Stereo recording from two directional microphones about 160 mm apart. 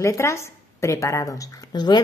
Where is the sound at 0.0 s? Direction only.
20° left (ahead or behind).